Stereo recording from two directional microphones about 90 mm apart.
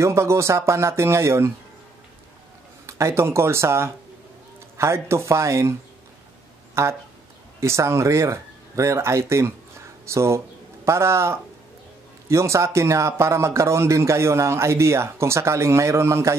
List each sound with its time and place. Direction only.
0.0 s speech: 30° right (ahead or behind)
2.9 s speech: 30° right (ahead or behind)
6.7 s a sound: 30° right (ahead or behind)
7.6 s speech: 30° right (ahead or behind)